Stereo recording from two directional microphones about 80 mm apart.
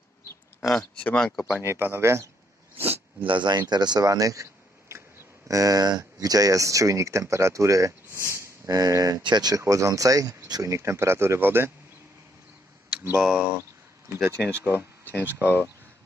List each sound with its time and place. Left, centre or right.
0.6 s speech: left
1.0 s speech: centre
1.6 s speech: right
3.3 s speech: right
8.6 s speech: right
9.6 s speech: right
13.2 s speech: centre
13.6 s a sound: right
14.5 s speech: right